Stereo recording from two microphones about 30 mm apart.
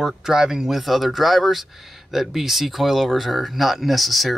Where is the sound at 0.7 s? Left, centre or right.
Centre.